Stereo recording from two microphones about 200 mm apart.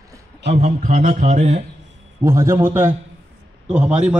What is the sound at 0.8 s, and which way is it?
Speech, 40° right (ahead or behind).